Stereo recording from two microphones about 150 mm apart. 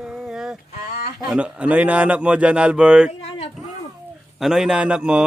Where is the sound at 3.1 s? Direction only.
40° left (ahead or behind).